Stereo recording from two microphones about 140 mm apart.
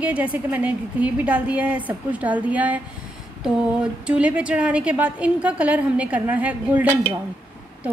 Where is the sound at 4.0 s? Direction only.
10° right (ahead or behind).